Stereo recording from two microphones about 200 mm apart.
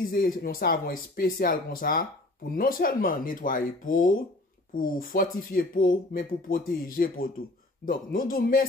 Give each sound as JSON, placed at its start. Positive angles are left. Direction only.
{"t": 0.1, "sound": "speech", "side_deg": 45}